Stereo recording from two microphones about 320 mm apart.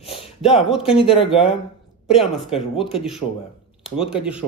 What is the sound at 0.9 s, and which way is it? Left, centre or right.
Speech, centre.